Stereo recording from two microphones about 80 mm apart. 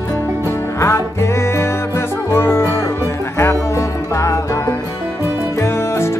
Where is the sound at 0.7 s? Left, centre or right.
Left.